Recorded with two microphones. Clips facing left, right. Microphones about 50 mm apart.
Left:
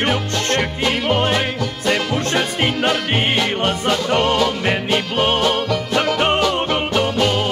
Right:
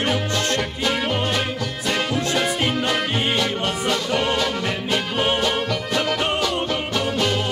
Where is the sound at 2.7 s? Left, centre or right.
Left.